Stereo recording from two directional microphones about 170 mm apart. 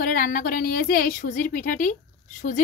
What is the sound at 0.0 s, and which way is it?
A woman's voice, 55° left (ahead or behind).